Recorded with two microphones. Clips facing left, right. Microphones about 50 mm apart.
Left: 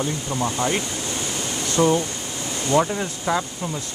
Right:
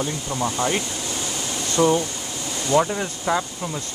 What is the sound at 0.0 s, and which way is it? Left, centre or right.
Speech, centre.